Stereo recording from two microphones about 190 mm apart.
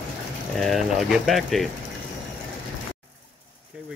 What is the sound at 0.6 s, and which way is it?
Speech, centre (ahead or behind).